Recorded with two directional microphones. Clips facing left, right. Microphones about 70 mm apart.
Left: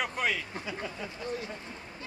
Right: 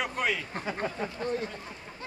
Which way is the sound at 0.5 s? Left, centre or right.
Right.